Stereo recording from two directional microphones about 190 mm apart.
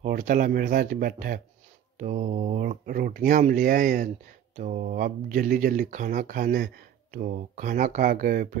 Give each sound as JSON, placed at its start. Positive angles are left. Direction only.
{"t": 0.0, "sound": "speech", "side_deg": -45}